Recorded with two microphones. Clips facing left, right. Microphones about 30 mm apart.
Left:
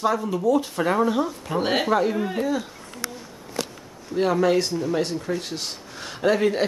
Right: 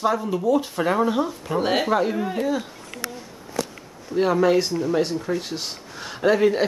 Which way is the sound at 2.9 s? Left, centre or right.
Right.